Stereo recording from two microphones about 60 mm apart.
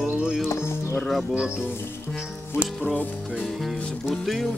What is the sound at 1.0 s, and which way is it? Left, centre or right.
Speech, centre.